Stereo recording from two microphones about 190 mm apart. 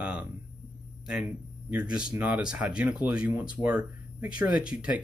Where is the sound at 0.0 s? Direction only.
5° right (ahead or behind).